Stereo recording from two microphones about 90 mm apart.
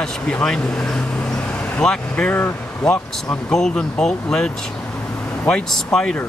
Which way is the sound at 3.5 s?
5° left (ahead or behind).